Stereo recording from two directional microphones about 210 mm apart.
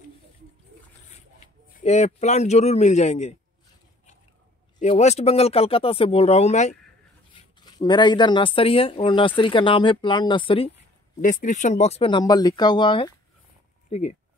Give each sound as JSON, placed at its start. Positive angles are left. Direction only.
{"t": 1.8, "sound": "a man's voice", "side_deg": 30}
{"t": 4.7, "sound": "speech", "side_deg": 30}
{"t": 7.3, "sound": "speech", "side_deg": 20}
{"t": 11.1, "sound": "speech", "side_deg": 40}
{"t": 13.8, "sound": "speech", "side_deg": 30}